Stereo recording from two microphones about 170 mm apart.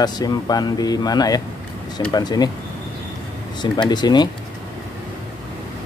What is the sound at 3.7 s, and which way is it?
Speech, 25° left (ahead or behind).